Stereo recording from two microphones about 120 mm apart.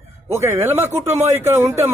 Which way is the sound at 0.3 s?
20° right (ahead or behind).